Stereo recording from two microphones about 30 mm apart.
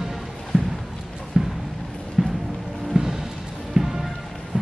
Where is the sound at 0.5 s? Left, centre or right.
Centre.